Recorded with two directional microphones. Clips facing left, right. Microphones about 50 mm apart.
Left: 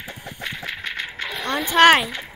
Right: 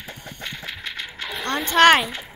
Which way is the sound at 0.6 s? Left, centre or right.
Left.